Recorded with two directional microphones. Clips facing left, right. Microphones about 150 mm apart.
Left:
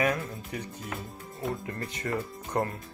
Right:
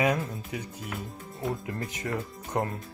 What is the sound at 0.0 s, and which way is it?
Speech, 20° right (ahead or behind).